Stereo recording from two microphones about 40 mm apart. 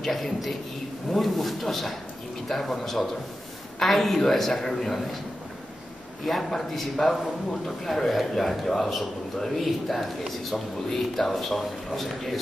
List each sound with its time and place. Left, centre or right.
0.0 s a man's voice: centre
6.2 s a man's voice: centre